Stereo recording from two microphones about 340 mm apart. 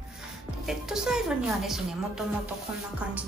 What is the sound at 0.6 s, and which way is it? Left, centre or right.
A woman's voice, centre.